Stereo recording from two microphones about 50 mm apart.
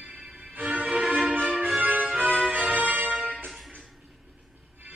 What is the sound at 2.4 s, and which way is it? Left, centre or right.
Music, centre.